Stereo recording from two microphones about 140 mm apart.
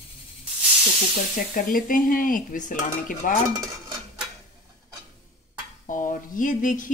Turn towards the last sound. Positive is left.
turn(degrees=70)  # may be behind; listen again after turning